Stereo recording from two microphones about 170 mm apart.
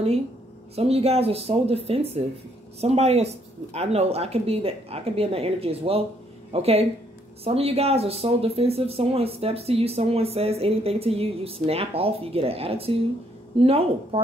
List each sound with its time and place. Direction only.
0.7 s speech: 35° right (ahead or behind)